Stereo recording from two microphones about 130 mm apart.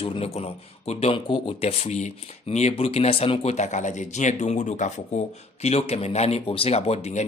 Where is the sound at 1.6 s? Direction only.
55° left (ahead or behind).